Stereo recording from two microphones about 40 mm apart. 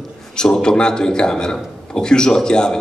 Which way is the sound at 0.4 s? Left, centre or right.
Centre.